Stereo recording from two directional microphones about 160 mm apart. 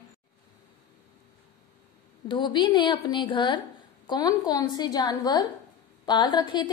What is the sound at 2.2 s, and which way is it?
A woman's voice, 30° left (ahead or behind).